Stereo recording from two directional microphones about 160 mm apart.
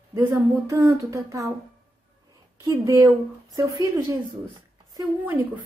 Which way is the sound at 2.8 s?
20° right (ahead or behind).